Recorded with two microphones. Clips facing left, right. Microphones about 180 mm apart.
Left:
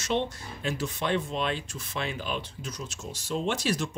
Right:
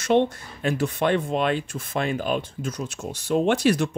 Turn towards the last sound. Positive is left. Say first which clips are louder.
# right 8 dB
turn(degrees=-60)  # may be behind; listen again after turning